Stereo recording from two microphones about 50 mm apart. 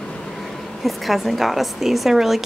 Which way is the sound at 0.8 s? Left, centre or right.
Centre.